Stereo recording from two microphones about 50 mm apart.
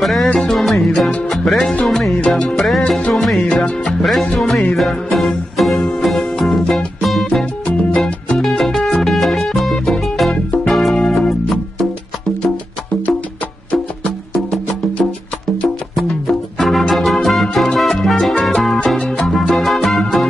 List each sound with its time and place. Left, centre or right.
0.0 s music: centre
8.4 s music: centre
10.3 s music: left
10.7 s music: centre
16.0 s music: centre